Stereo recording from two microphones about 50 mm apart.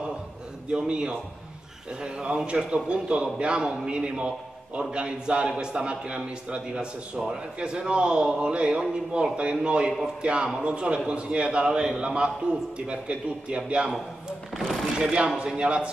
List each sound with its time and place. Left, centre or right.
0.7 s a man's voice: centre
14.6 s speech: centre
15.3 s a man's voice: right